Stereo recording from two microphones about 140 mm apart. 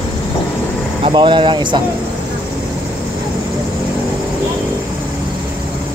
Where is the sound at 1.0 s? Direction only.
35° right (ahead or behind).